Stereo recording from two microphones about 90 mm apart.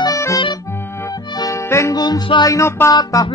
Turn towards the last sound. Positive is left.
turn(degrees=45)  # may be behind; listen again after turning